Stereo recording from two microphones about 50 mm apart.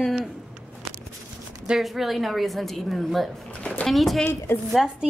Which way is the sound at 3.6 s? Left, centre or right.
Left.